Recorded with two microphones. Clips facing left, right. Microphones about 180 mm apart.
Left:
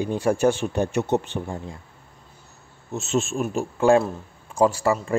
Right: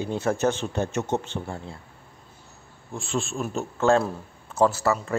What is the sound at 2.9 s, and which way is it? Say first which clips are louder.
A man's voice: left 5 dB; 20° left (ahead or behind).